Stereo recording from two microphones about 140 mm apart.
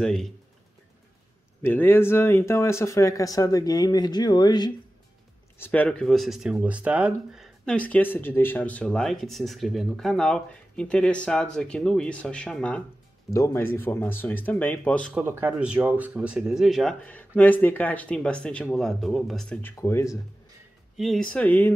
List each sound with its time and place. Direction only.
0.0 s speech: 5° left (ahead or behind)
1.6 s speech: 15° left (ahead or behind); by 4.7 s 30° left (ahead or behind)
5.6 s speech: 10° left (ahead or behind); by 7.4 s 10° right (ahead or behind)
7.6 s speech: 10° left (ahead or behind)
13.3 s speech: 20° left (ahead or behind)
15.1 s speech: 15° right (ahead or behind); by 19.6 s centre (ahead or behind)
19.6 s speech: 20° left (ahead or behind)
20.9 s speech: centre (ahead or behind)